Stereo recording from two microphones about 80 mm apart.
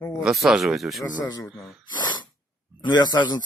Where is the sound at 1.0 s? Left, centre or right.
Left.